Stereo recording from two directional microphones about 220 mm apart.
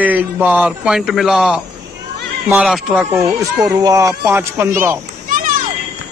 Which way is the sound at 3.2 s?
15° right (ahead or behind).